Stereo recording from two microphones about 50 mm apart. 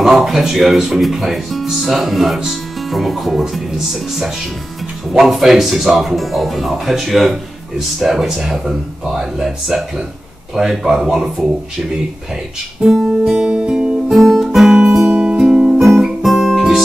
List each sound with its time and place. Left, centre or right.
0.2 s speech: centre
13.0 s music: centre
14.0 s guitar: centre
15.2 s music: centre